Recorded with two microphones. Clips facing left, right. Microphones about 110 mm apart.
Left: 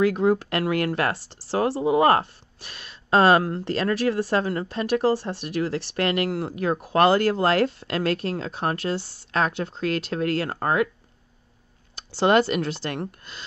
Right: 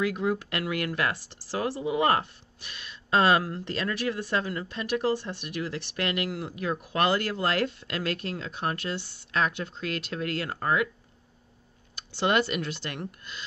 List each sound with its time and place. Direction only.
0.0 s speech: 40° left (ahead or behind)
11.9 s speech: 35° left (ahead or behind)